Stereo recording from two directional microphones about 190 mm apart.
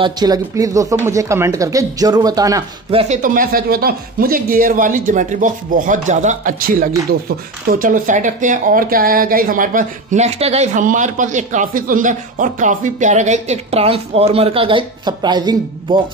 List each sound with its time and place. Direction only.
0.0 s speech: 20° right (ahead or behind)
2.9 s speech: 30° right (ahead or behind)
3.2 s speech: 45° right (ahead or behind); by 16.0 s 25° right (ahead or behind)